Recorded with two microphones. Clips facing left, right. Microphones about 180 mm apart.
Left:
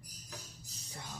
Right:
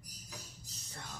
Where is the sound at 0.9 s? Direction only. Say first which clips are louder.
Left 1 dB; 10° left (ahead or behind).